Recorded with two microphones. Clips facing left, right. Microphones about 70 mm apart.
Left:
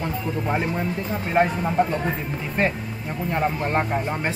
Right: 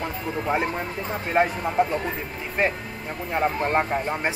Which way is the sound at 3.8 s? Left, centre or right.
Centre.